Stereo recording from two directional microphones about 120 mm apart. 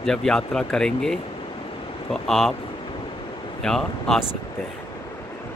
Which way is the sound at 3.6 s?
5° left (ahead or behind).